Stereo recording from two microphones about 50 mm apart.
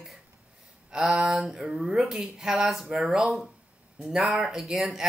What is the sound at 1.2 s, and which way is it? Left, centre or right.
Speech, centre.